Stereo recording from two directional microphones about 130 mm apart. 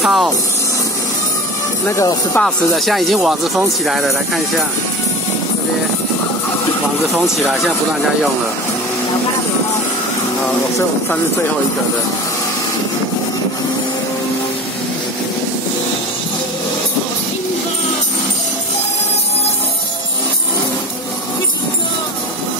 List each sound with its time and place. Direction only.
0.0 s speech: centre (ahead or behind)
1.9 s speech: 20° left (ahead or behind)
2.4 s speech: centre (ahead or behind)